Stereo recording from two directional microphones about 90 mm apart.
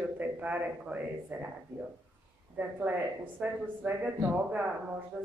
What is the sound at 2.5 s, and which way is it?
Speech, 15° right (ahead or behind).